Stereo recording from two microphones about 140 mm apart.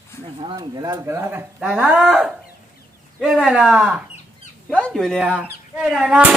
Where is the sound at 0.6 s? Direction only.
25° right (ahead or behind); by 5.3 s centre (ahead or behind).